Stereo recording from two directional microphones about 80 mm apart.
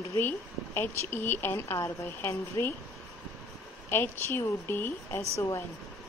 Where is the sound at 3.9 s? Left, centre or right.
Left.